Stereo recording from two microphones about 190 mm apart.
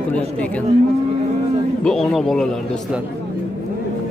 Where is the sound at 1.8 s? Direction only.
Centre (ahead or behind).